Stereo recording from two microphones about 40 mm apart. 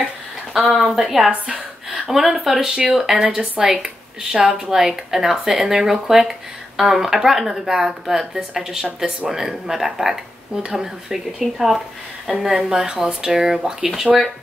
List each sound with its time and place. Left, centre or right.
0.5 s a woman's voice: centre